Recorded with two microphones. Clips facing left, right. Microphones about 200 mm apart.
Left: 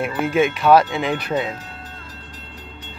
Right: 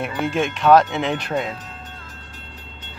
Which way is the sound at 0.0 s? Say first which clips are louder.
Left 4 dB; 5° left (ahead or behind).